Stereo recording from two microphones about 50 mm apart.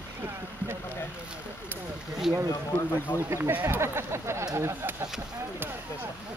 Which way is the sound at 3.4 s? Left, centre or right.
Right.